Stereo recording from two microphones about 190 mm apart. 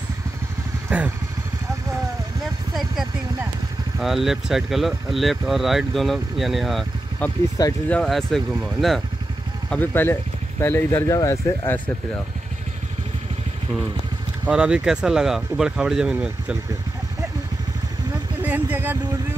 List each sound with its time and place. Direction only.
0.8 s vehicle: 10° right (ahead or behind)
4.0 s speech: centre (ahead or behind)
7.6 s speech: 20° left (ahead or behind)
7.9 s speech: centre (ahead or behind)
9.7 s speech: 10° left (ahead or behind)
14.4 s speech: 5° right (ahead or behind)
18.4 s vehicle: 10° right (ahead or behind)